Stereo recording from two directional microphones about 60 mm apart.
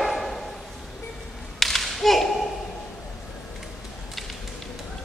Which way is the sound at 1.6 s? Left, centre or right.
Centre.